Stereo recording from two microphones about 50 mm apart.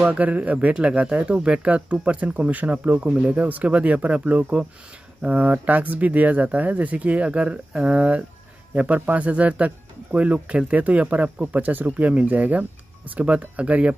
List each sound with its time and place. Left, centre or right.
0.0 s speech: right